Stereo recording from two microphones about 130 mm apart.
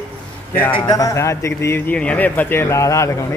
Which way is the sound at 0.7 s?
40° left (ahead or behind).